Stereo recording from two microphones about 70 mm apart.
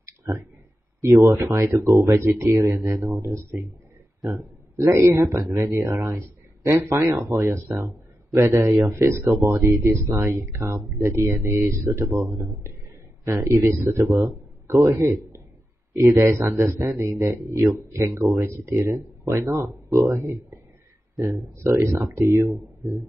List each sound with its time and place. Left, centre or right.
1.2 s speech: right
3.1 s a man's voice: right